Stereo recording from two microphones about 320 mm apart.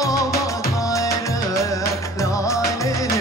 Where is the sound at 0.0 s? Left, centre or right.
Centre.